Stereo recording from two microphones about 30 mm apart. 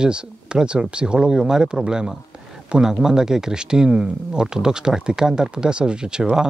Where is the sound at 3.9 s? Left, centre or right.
Right.